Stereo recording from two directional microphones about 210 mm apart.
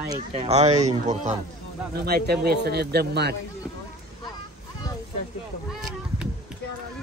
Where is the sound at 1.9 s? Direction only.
50° right (ahead or behind).